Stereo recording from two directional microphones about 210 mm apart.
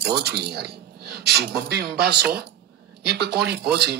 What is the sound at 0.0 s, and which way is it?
Speech, 50° right (ahead or behind).